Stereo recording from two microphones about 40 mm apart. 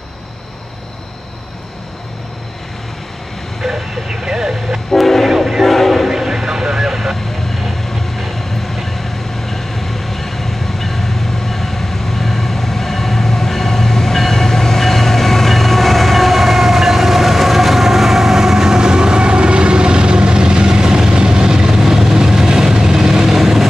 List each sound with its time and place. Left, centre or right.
3.6 s vehicle: centre
4.9 s train: centre
5.3 s vehicle: centre
6.0 s vehicle: centre
9.5 s train: centre